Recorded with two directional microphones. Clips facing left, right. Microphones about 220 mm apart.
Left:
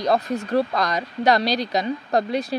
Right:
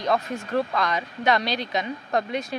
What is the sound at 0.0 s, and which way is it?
Speech, 35° left (ahead or behind).